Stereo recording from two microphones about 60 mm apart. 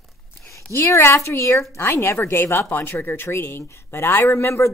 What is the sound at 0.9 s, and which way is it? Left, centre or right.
A woman's voice, left.